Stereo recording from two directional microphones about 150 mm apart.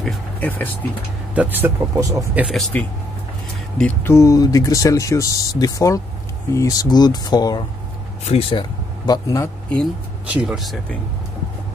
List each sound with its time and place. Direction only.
0.0 s speech: 10° left (ahead or behind)
1.3 s speech: 10° right (ahead or behind)
2.5 s speech: 10° left (ahead or behind); by 7.6 s 25° left (ahead or behind)
8.3 s speech: 40° left (ahead or behind)
10.2 s speech: 5° right (ahead or behind)